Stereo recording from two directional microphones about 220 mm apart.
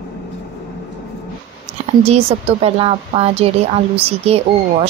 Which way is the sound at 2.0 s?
25° right (ahead or behind).